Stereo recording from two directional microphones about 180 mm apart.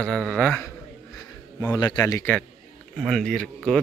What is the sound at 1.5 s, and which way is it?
Speech, 20° left (ahead or behind).